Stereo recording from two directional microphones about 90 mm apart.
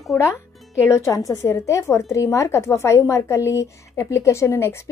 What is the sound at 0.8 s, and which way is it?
Speech, 35° left (ahead or behind).